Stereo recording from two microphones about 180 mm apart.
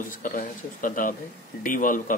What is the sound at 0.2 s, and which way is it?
Speech, 50° left (ahead or behind).